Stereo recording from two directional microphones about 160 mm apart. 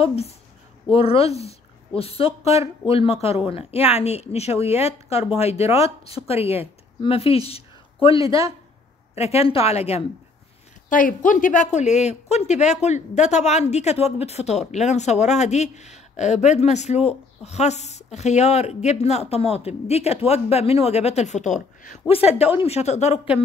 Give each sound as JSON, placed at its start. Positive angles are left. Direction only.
{"t": 0.0, "sound": "a woman's voice", "side_deg": 40}
{"t": 2.4, "sound": "speech", "side_deg": -20}
{"t": 2.9, "sound": "a woman's voice", "side_deg": 35}
{"t": 10.9, "sound": "speech", "side_deg": 55}